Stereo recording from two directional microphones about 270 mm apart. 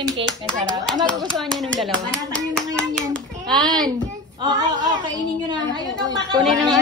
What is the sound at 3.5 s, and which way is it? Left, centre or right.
Speech, centre.